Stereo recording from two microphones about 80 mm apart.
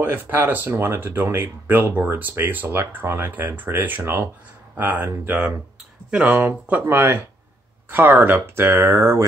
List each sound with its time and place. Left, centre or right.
0.0 s speech: right
6.0 s speech: centre; by 9.2 s right